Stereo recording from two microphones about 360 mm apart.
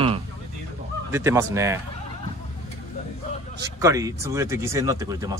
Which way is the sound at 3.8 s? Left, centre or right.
Centre.